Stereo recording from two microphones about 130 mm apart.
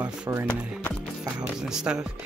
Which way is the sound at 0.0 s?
20° right (ahead or behind).